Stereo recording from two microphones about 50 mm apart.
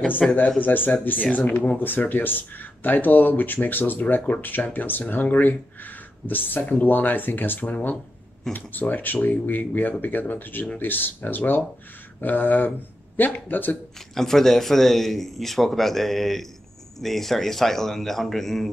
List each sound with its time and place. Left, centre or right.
0.2 s speech: centre
0.6 s speech: left
14.1 s speech: centre